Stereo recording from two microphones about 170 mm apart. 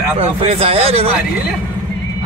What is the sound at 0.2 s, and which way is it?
Speech, 35° right (ahead or behind).